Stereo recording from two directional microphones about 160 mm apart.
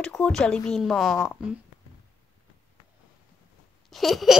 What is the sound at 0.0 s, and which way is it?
Speech, 5° left (ahead or behind).